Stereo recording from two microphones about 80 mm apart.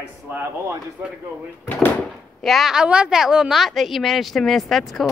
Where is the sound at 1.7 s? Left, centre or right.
Left.